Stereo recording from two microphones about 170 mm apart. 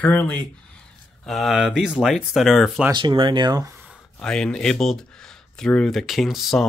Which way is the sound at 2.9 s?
30° right (ahead or behind).